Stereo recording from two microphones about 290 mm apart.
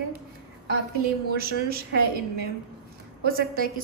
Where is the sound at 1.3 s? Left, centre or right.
Right.